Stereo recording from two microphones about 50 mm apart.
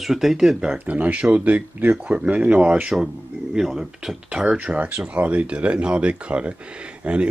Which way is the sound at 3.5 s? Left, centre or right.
Centre.